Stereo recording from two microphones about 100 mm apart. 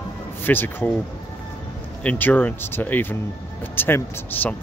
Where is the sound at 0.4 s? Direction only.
20° left (ahead or behind).